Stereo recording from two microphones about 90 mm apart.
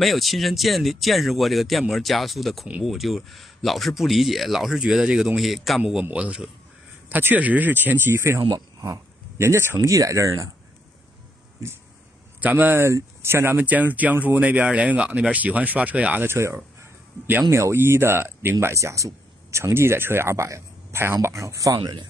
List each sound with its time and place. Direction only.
0.0 s speech: centre (ahead or behind)
6.0 s speech: 15° right (ahead or behind)
7.1 s speech: 20° right (ahead or behind)
12.4 s speech: 20° right (ahead or behind)
16.3 s speech: 30° right (ahead or behind)
16.5 s a sound: 20° right (ahead or behind)
17.5 s speech: 30° right (ahead or behind)
21.7 s speech: 60° right (ahead or behind)